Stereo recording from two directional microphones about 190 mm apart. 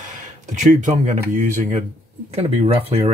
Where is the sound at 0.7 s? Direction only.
40° right (ahead or behind).